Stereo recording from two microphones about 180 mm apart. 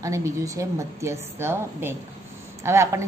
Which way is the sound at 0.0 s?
15° right (ahead or behind).